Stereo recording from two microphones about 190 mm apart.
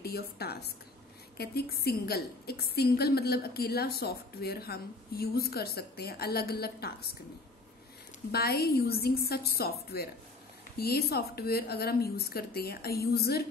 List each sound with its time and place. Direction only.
0.0 s a woman's voice: 55° left (ahead or behind)
8.3 s a woman's voice: 55° left (ahead or behind)